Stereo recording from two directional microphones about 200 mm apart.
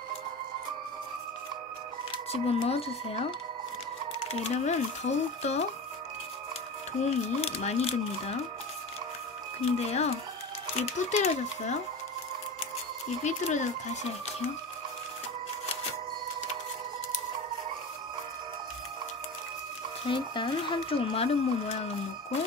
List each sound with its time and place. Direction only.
2.3 s speech: 30° left (ahead or behind)
4.3 s speech: 30° left (ahead or behind)
7.0 s speech: 30° left (ahead or behind)
9.8 s speech: 35° left (ahead or behind)
13.2 s speech: 35° left (ahead or behind)
20.1 s speech: 25° left (ahead or behind)